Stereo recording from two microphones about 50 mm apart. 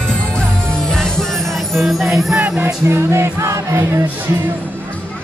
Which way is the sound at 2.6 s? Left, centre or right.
Right.